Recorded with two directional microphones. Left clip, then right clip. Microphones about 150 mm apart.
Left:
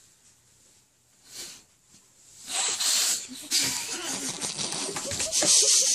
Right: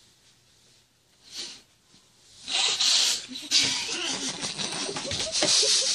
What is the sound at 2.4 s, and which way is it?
Rub, 15° left (ahead or behind).